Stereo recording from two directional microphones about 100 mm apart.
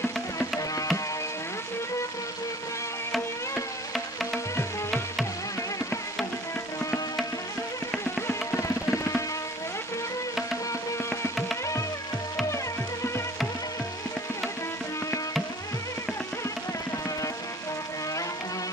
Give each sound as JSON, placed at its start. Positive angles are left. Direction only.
{"t": 0.0, "sound": "music", "side_deg": 30}
{"t": 3.9, "sound": "music", "side_deg": 0}
{"t": 8.3, "sound": "music", "side_deg": 30}